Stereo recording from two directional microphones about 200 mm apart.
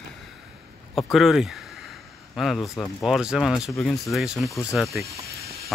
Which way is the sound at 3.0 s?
Centre (ahead or behind).